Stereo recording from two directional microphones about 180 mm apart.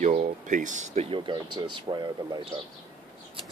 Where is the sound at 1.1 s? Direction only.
30° right (ahead or behind).